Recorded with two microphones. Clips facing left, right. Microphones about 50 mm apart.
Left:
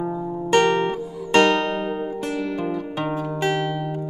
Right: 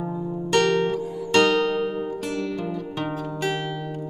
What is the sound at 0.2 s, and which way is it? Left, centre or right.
Music, left.